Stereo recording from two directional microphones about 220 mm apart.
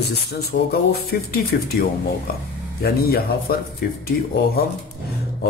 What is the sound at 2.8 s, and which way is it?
Speech, 45° left (ahead or behind).